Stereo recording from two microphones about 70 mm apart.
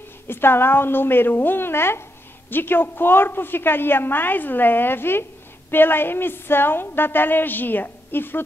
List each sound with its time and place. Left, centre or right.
0.3 s a woman's voice: left